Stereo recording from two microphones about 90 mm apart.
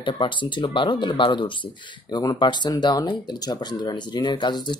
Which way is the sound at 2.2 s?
50° left (ahead or behind).